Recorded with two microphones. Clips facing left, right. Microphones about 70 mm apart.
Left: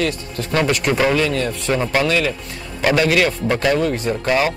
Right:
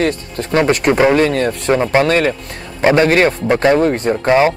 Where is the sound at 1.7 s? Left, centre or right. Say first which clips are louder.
Right 5 dB; right.